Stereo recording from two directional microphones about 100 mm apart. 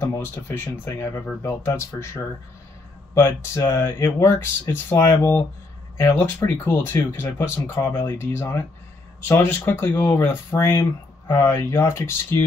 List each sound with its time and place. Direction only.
0.0 s speech: 25° left (ahead or behind)
3.2 s speech: 25° left (ahead or behind)